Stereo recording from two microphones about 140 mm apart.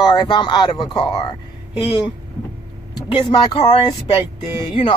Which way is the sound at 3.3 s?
35° left (ahead or behind).